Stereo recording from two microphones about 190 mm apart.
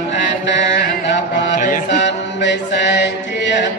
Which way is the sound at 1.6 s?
45° left (ahead or behind).